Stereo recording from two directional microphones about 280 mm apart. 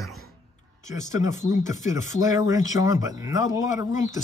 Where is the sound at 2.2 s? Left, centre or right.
Centre.